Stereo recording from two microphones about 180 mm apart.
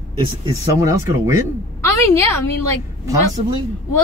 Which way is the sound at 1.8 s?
15° left (ahead or behind).